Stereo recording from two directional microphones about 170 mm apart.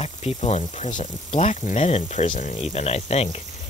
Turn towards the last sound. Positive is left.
turn(degrees=40)  # may be behind; listen again after turning